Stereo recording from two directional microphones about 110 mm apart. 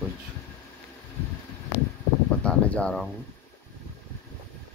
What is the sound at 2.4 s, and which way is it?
Speech, 10° left (ahead or behind).